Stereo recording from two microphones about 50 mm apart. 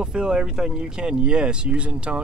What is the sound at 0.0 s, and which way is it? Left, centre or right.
Speech, centre.